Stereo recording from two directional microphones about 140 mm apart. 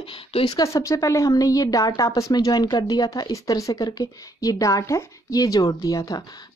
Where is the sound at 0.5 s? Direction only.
20° left (ahead or behind).